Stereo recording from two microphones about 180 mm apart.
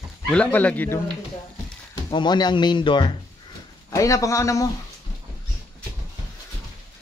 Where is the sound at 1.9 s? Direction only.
25° left (ahead or behind).